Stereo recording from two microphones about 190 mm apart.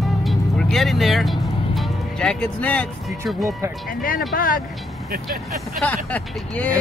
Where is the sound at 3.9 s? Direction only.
50° left (ahead or behind).